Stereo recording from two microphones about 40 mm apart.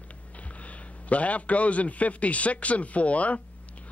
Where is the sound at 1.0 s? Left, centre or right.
Left.